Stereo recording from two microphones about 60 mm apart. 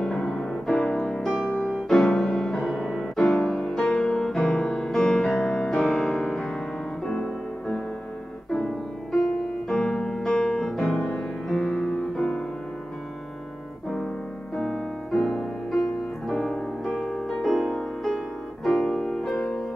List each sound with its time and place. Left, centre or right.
0.0 s music: centre
9.7 s piano: centre
10.3 s music: centre
14.6 s music: centre